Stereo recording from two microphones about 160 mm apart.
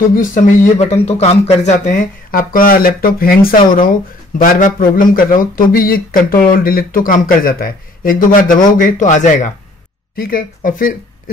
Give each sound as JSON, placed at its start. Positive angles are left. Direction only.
{"t": 0.1, "sound": "a man's voice", "side_deg": 55}
{"t": 10.1, "sound": "speech", "side_deg": 65}